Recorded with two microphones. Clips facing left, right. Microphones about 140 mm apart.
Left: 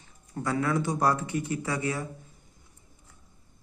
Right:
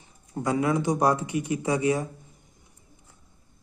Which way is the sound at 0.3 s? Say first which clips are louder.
Right 3 dB; 15° right (ahead or behind).